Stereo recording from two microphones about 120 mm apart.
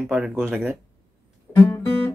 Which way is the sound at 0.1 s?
5° right (ahead or behind).